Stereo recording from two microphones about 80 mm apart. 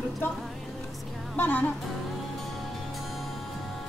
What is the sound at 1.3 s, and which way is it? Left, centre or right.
Speech, left.